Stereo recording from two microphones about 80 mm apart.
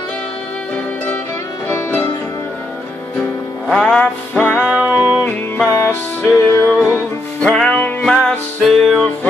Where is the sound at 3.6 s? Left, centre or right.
Centre.